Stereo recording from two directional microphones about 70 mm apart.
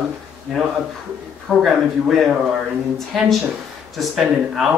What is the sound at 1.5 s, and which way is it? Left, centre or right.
Speech, centre.